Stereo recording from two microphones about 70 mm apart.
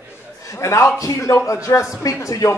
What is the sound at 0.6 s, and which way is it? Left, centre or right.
A man's voice, left.